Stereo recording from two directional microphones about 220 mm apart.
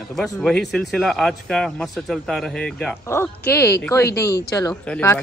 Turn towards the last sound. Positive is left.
turn(degrees=10)  # may be behind; listen again after turning